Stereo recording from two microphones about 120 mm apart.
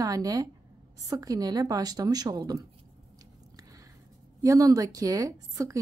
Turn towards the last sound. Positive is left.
turn(degrees=-30)  # may be behind; listen again after turning